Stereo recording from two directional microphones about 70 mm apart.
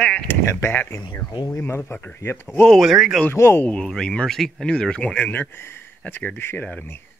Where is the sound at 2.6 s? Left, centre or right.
Centre.